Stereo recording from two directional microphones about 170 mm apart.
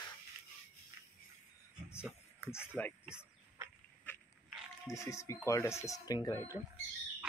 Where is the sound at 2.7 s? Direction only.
10° left (ahead or behind).